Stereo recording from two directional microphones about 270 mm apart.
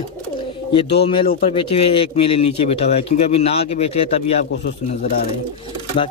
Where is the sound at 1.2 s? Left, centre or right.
Left.